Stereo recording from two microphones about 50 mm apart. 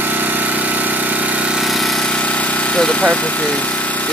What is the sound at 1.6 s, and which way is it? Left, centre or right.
Vehicle, centre.